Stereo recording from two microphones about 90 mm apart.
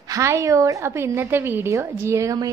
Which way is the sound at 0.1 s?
35° right (ahead or behind).